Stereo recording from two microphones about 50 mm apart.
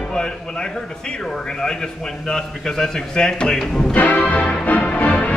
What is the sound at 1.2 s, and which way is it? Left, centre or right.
A man's voice, centre.